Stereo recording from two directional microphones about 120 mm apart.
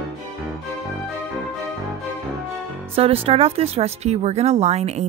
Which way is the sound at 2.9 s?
55° right (ahead or behind).